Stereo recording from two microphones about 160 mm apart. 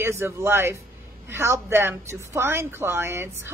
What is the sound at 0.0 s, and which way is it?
A woman's voice, 15° right (ahead or behind).